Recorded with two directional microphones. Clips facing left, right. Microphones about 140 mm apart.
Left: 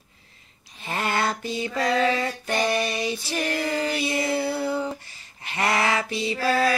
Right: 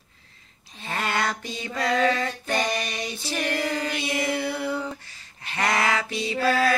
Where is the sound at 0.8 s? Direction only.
25° left (ahead or behind).